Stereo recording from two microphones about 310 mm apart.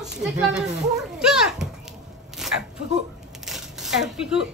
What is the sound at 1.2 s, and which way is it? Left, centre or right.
Children playing, centre.